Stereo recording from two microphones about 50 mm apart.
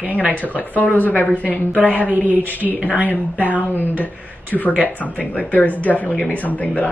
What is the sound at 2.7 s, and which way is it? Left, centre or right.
A woman's voice, left.